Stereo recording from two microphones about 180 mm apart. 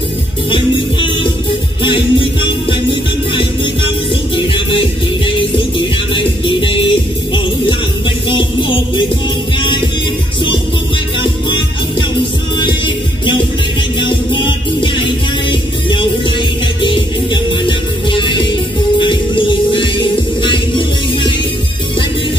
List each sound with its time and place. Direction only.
0.5 s music: 30° left (ahead or behind)
12.5 s music: 25° left (ahead or behind)